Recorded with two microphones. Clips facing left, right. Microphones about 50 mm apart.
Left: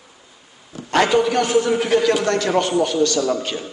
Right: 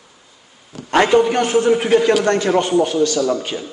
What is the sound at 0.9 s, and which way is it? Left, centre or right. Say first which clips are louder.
A man's voice: right 3 dB; right.